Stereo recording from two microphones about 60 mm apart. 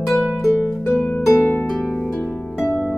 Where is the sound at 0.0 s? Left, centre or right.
Centre.